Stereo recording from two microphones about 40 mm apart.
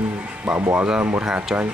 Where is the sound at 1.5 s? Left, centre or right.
Centre.